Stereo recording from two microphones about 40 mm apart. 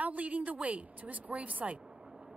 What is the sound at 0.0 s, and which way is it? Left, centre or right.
A woman's voice, right.